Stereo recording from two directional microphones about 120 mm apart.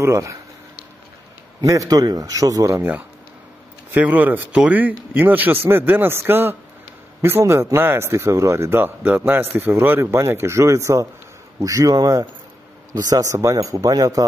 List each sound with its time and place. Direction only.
0.0 s speech: 25° right (ahead or behind)
1.6 s speech: 30° right (ahead or behind)
3.9 s speech: 15° right (ahead or behind); by 14.2 s 30° right (ahead or behind)